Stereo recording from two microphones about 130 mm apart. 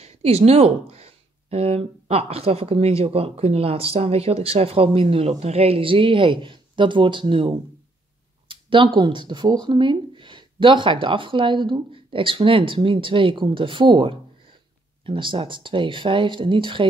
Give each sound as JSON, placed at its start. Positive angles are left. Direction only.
{"t": 0.0, "sound": "speech", "side_deg": -50}